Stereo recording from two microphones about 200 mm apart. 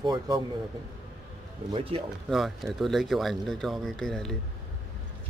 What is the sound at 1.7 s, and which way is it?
Speech, 25° right (ahead or behind).